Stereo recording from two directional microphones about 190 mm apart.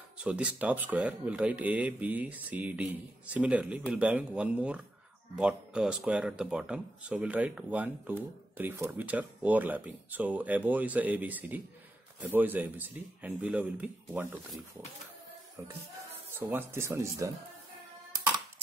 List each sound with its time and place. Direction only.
0.2 s speech: 5° right (ahead or behind)
16.3 s speech: 10° right (ahead or behind)